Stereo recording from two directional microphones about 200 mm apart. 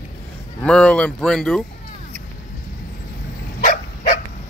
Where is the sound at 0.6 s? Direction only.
5° left (ahead or behind).